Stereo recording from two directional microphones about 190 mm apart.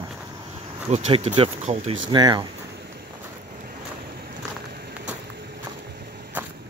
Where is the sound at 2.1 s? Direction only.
25° right (ahead or behind).